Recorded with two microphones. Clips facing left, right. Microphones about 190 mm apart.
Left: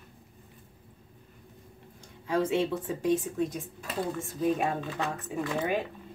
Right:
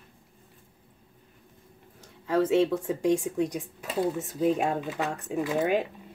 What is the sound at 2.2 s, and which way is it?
Speech, 5° right (ahead or behind).